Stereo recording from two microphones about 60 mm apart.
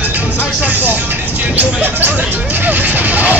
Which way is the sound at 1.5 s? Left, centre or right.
Right.